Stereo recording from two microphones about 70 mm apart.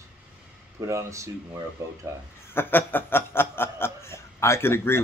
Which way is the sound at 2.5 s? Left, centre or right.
Left.